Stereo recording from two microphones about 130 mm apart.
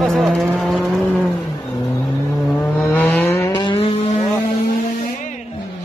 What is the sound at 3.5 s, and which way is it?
Vehicle, 40° left (ahead or behind).